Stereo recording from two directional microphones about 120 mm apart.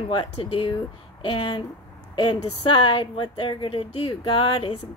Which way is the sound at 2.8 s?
45° left (ahead or behind).